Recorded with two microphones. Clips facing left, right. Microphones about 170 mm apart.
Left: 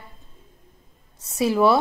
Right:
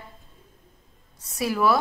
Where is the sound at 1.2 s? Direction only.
25° left (ahead or behind).